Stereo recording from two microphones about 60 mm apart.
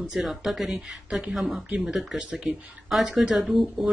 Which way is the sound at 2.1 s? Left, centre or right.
Centre.